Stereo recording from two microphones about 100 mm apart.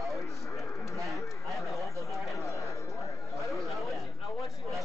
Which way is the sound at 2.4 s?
30° left (ahead or behind).